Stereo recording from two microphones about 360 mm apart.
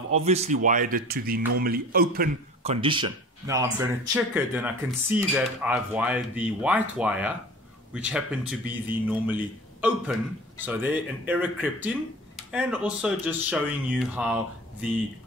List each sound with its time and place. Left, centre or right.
0.1 s a man's voice: centre